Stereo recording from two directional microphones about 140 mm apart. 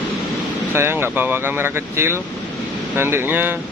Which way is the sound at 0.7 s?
15° right (ahead or behind).